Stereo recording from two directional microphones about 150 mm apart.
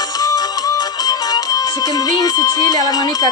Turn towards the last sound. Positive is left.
turn(degrees=25)  # may be behind; listen again after turning